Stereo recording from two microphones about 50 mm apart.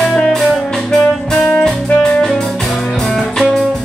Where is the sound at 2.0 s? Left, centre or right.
Centre.